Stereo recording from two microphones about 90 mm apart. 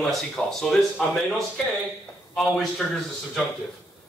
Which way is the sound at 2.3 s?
5° left (ahead or behind).